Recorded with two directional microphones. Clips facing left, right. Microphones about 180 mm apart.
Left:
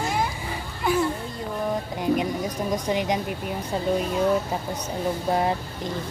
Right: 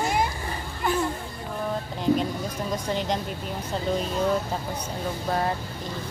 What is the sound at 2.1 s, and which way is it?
Speech, 15° left (ahead or behind).